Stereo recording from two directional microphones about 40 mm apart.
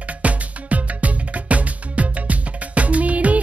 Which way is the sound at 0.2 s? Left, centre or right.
Right.